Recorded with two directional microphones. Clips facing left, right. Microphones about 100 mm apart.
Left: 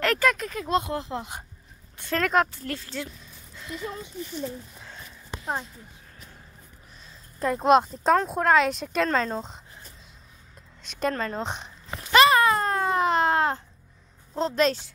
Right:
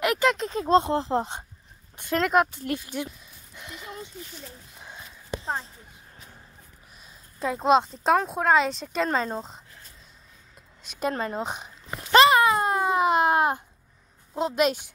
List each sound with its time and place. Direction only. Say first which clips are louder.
0.0 s speech: right 1 dB; 20° right (ahead or behind)
2.0 s speech: right 1 dB; 15° right (ahead or behind)
3.5 s a sound: left 6 dB; 20° right (ahead or behind)
7.3 s speech: left 1 dB; centre (ahead or behind)
9.0 s speech: left 1 dB; 10° right (ahead or behind)
10.8 s a woman's voice: left 1 dB; 5° right (ahead or behind)
11.4 s speech: even; 5° right (ahead or behind)
12.3 s baby cry: right 1 dB; 15° right (ahead or behind)
14.3 s speech: even; 10° right (ahead or behind)